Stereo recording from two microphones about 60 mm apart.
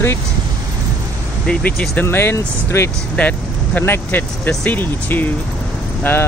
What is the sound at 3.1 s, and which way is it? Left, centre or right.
Vehicle, left.